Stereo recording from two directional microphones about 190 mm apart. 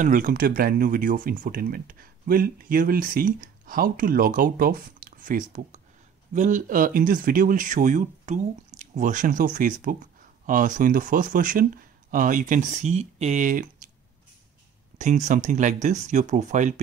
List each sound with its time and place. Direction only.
0.0 s speech: 45° right (ahead or behind)
15.0 s speech: 40° right (ahead or behind)